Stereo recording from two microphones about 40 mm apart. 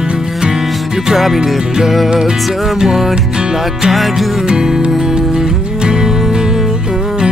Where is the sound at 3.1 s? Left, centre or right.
Right.